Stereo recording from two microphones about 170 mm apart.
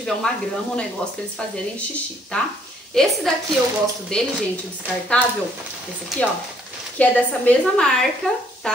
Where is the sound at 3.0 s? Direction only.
5° left (ahead or behind).